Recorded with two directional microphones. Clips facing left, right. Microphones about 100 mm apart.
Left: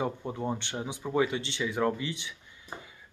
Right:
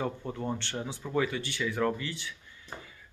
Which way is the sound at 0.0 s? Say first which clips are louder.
Left 2 dB; 15° left (ahead or behind).